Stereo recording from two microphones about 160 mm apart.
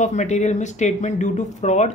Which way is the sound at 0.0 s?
45° left (ahead or behind).